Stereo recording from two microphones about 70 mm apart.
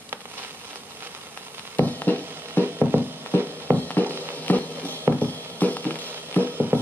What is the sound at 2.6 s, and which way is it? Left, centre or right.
Music, right.